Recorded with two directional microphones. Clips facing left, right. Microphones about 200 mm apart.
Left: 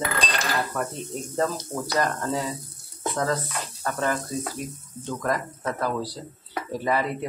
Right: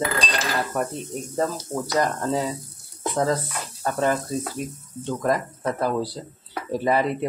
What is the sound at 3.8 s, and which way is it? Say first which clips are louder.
Speech: right 4 dB; 25° right (ahead or behind).